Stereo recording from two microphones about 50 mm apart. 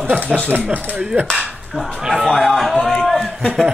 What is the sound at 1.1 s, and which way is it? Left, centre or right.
Speech, right.